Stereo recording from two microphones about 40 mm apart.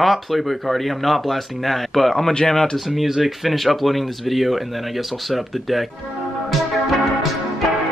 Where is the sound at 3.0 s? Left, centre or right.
Centre.